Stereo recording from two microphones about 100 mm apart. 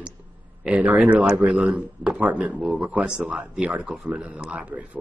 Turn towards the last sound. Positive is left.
turn(degrees=-15)  # may be behind; listen again after turning